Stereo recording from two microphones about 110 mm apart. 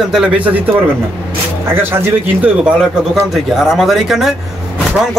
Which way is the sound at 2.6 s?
10° right (ahead or behind).